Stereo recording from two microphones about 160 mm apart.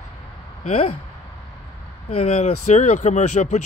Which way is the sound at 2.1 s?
45° left (ahead or behind).